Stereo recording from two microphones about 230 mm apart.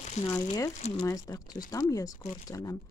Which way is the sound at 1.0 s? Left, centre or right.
Centre.